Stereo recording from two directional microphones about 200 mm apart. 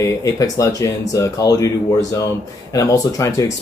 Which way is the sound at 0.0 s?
15° left (ahead or behind).